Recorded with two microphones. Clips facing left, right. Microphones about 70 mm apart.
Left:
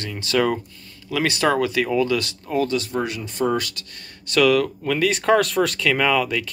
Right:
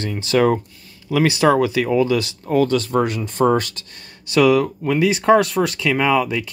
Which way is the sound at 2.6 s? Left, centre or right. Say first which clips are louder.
Right 5 dB; right.